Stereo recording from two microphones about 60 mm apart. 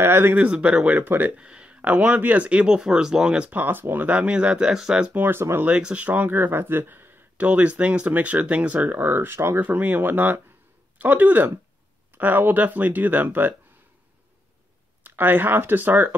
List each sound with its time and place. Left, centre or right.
0.0 s speech: right
0.4 s speech: right
1.3 s a sound: centre
1.8 s speech: right
3.4 s speech: right; by 5.1 s centre
5.1 s speech: right
5.8 s speech: right
7.4 s speech: right
9.6 s speech: right
15.0 s speech: right